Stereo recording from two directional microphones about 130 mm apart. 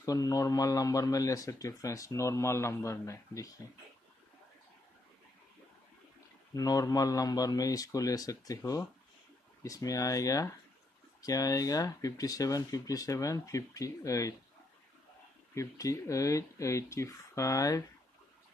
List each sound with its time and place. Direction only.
0.0 s speech: 25° left (ahead or behind)
6.5 s speech: 25° left (ahead or behind)
15.5 s speech: 25° left (ahead or behind)